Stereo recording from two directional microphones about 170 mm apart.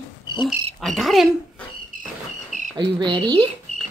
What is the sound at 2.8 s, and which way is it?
Speech, 30° right (ahead or behind).